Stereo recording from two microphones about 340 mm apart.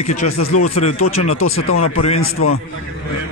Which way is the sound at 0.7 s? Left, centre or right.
Centre.